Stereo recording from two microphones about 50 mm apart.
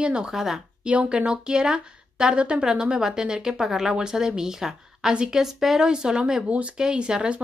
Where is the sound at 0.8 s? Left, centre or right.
Right.